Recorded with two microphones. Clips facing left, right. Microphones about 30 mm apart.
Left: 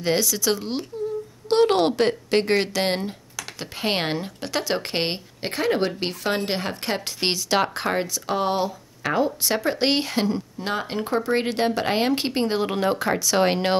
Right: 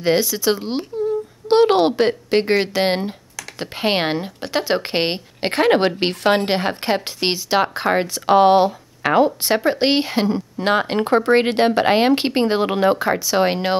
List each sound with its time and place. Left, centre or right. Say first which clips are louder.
0.0 s speech: right 5 dB; centre
5.4 s speech: right 7 dB; right; by 8.1 s centre
8.1 s speech: right 11 dB; right
9.7 s speech: right 4 dB; centre
10.6 s speech: right 12 dB; right; by 13.7 s centre